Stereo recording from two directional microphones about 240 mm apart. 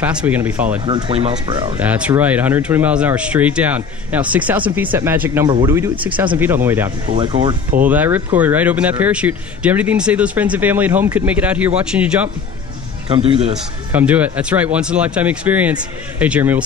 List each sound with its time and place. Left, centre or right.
0.0 s speech: centre
0.8 s speech: right
1.8 s speech: centre
7.1 s speech: right
7.8 s speech: centre
13.1 s speech: right
13.9 s speech: centre